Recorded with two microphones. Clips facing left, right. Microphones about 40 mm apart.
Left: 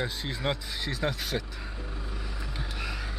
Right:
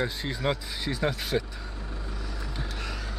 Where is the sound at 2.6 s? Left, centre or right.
Centre.